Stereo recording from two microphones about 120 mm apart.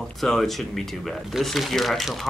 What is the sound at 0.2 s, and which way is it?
Speech, centre (ahead or behind).